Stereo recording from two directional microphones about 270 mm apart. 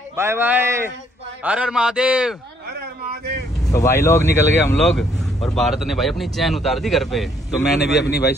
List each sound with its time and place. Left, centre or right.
0.1 s speech: centre
3.7 s speech: centre
7.7 s speech: left